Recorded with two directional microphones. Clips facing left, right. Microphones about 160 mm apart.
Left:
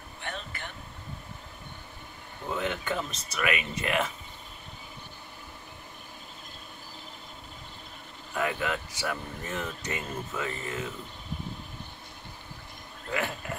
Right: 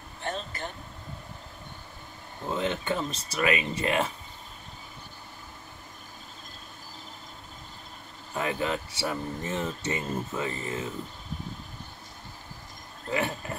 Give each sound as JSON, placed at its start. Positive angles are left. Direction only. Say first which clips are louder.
{"t": 0.2, "sound": "air conditioning", "louder": "right 5 dB", "side_deg": -40}
{"t": 2.5, "sound": "speech", "louder": "right 2 dB", "side_deg": -25}
{"t": 8.4, "sound": "speech", "louder": "right 1 dB", "side_deg": -30}
{"t": 13.1, "sound": "a sound", "louder": "right 2 dB", "side_deg": -30}